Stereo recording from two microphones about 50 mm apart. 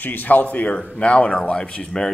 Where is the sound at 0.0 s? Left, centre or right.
Left.